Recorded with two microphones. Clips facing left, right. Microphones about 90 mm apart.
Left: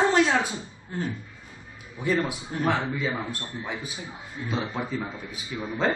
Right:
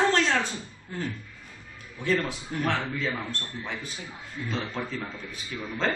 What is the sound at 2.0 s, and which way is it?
A man's voice, 10° left (ahead or behind).